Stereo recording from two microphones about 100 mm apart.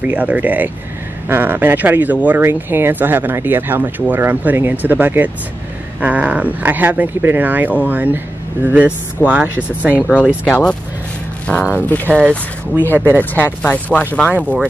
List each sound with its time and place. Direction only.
0.0 s speech: 15° right (ahead or behind)
9.9 s speech: 15° left (ahead or behind)
12.1 s speech: 15° right (ahead or behind)
12.8 s speech: 20° left (ahead or behind)
14.3 s speech: 15° right (ahead or behind)